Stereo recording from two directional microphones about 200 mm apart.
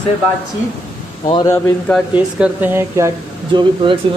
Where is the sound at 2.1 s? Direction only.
10° right (ahead or behind).